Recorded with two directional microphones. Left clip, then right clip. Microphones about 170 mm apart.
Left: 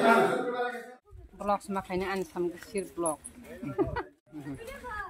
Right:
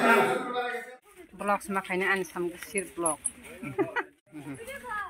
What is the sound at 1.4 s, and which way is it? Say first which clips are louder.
Speech: right 2 dB; 5° right (ahead or behind).